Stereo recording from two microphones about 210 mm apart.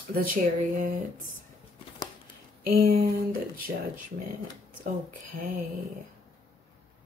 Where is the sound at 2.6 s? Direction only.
45° right (ahead or behind).